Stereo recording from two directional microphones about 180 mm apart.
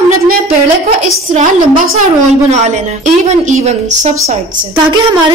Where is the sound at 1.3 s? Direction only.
40° right (ahead or behind).